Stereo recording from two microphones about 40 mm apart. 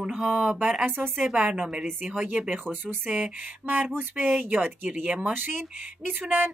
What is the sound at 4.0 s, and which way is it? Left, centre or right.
Speech, right.